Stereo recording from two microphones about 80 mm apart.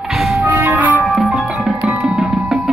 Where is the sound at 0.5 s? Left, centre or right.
Right.